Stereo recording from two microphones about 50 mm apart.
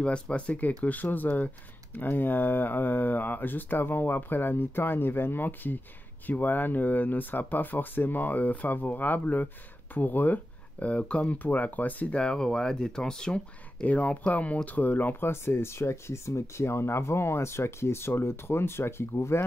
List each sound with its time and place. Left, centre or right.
0.0 s speech: left
12.2 s speech: centre
13.8 s speech: left